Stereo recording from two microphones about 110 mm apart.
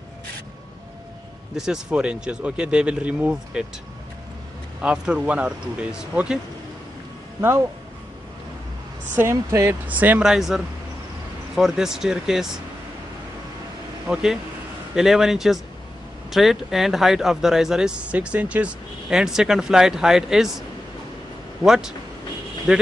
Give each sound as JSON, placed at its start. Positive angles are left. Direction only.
{"t": 1.6, "sound": "speech", "side_deg": -5}
{"t": 4.8, "sound": "speech", "side_deg": -5}
{"t": 9.1, "sound": "speech", "side_deg": -25}
{"t": 14.0, "sound": "speech", "side_deg": -5}
{"t": 21.6, "sound": "speech", "side_deg": -5}